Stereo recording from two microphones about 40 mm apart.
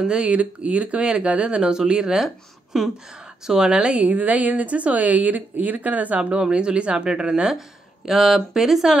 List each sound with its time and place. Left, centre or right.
0.0 s speech: right; by 2.9 s centre
3.4 s a woman's voice: centre; by 6.3 s right
6.5 s speech: right
7.5 s speech: centre